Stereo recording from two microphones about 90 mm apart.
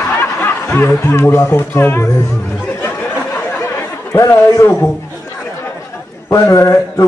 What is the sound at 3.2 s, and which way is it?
Chatter, 20° left (ahead or behind).